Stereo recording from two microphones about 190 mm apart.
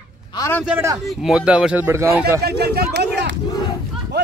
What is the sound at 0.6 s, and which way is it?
Speech, 5° right (ahead or behind).